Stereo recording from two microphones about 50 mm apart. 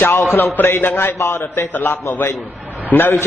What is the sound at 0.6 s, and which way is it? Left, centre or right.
A man's voice, left.